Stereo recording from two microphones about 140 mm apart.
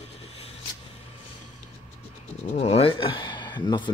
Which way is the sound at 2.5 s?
50° left (ahead or behind).